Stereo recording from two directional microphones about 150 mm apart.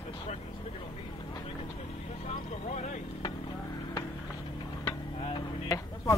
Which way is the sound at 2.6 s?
55° left (ahead or behind).